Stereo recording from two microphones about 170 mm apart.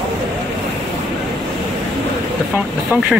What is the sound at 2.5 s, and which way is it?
Speech, 10° right (ahead or behind).